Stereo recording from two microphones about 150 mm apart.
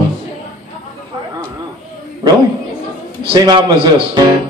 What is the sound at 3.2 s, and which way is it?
A man's voice, 30° right (ahead or behind).